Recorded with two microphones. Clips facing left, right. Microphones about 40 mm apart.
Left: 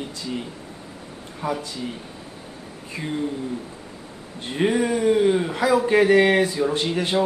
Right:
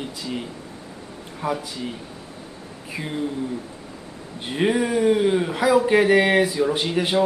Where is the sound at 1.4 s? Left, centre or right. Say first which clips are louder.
Right 1 dB; right.